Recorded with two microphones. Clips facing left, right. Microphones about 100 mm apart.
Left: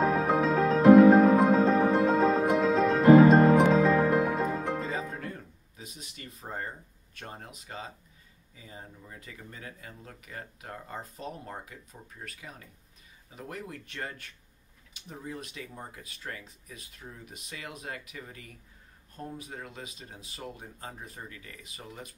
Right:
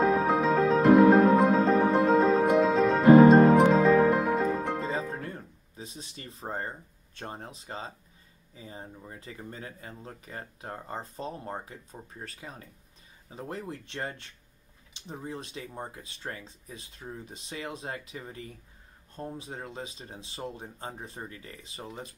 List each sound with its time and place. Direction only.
0.0 s music: centre (ahead or behind)
4.8 s music: 30° right (ahead or behind)
5.8 s a sound: 30° right (ahead or behind)
7.2 s speech: 30° right (ahead or behind)